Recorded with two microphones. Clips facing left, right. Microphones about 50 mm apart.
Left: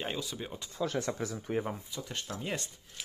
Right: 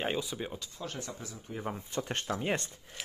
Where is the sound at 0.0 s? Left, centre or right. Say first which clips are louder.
Right 3 dB; centre.